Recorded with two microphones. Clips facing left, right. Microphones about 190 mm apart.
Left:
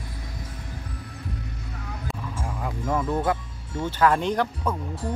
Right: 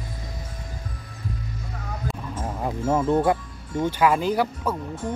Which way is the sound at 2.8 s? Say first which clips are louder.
Right 4 dB; 20° right (ahead or behind).